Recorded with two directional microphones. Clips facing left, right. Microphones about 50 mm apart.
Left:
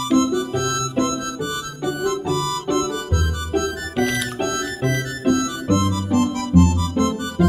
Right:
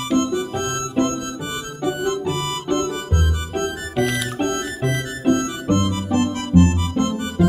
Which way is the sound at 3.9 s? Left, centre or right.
Centre.